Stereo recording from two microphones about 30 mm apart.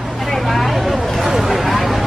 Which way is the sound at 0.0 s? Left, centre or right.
Centre.